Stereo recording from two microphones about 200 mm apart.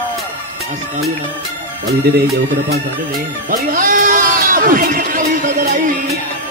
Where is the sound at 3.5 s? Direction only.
40° right (ahead or behind).